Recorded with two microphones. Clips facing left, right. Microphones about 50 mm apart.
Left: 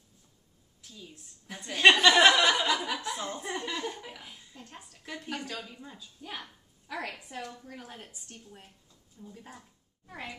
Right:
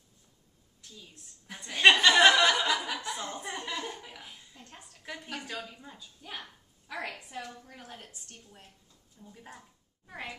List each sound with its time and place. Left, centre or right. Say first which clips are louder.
1.5 s a woman's voice: left 1 dB; centre
9.3 s speech: right 1 dB; centre